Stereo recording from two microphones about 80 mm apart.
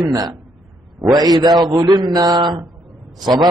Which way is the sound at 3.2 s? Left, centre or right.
Right.